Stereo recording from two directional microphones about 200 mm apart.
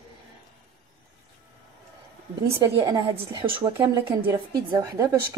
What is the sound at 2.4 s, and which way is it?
A woman's voice, 20° right (ahead or behind).